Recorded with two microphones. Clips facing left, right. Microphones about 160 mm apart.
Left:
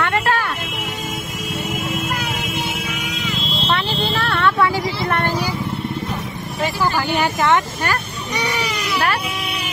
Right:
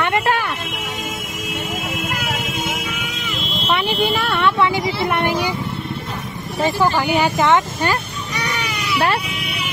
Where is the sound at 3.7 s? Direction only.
15° right (ahead or behind).